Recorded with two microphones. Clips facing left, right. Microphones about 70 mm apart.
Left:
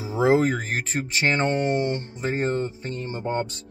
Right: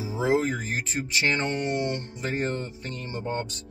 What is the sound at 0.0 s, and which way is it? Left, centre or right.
Speech, left.